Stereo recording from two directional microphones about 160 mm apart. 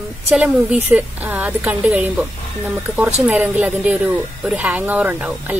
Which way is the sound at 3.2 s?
10° right (ahead or behind).